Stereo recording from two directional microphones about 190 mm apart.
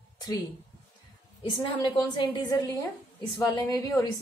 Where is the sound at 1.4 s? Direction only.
25° left (ahead or behind).